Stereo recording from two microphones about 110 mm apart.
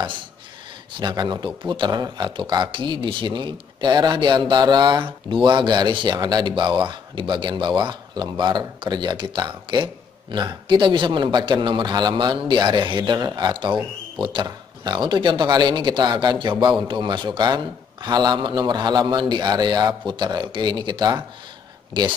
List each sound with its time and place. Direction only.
0.9 s a man's voice: 40° right (ahead or behind)